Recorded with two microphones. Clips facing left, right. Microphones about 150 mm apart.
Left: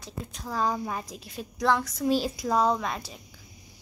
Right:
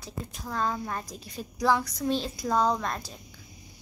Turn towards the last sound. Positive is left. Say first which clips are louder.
# left 1 dB
turn(degrees=5)  # may be behind; listen again after turning